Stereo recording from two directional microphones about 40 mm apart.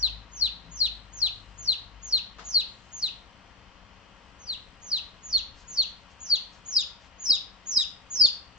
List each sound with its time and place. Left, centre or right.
0.0 s bird: right
2.0 s bird: centre
2.4 s chicken: right
4.5 s bird: right